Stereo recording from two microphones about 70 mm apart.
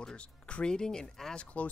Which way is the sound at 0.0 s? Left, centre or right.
Centre.